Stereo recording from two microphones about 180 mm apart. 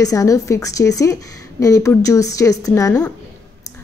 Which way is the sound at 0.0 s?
20° left (ahead or behind).